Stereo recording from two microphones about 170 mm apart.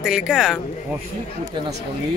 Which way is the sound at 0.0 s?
5° right (ahead or behind).